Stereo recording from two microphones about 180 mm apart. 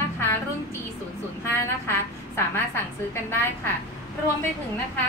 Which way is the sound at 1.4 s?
15° left (ahead or behind).